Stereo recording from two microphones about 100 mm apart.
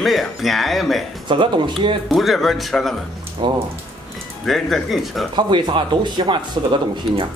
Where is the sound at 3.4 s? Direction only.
55° right (ahead or behind).